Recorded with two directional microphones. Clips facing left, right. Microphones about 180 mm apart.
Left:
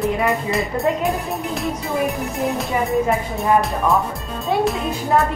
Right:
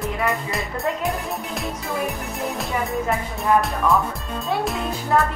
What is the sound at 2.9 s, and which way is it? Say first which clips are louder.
Speech: left 5 dB; 20° left (ahead or behind).